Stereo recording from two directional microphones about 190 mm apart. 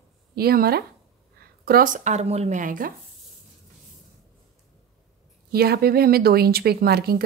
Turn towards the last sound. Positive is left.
turn(degrees=-55)  # may be behind; listen again after turning